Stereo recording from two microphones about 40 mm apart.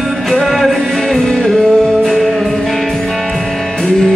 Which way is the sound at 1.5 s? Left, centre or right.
Centre.